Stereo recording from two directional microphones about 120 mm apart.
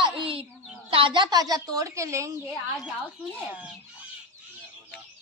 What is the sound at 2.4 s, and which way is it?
Speech, 5° right (ahead or behind).